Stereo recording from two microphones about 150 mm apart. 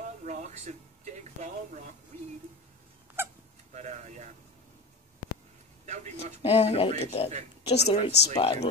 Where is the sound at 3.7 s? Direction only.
50° right (ahead or behind).